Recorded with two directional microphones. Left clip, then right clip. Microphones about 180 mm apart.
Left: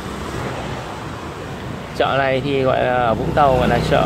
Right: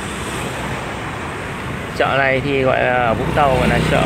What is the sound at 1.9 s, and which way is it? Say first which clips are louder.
Speech: right 1 dB; 5° left (ahead or behind).